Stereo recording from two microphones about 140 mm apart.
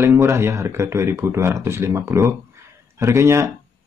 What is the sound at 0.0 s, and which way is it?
Speech, 20° right (ahead or behind).